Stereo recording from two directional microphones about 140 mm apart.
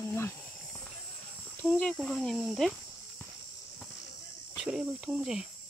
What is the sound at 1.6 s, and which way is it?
Speech, 10° left (ahead or behind).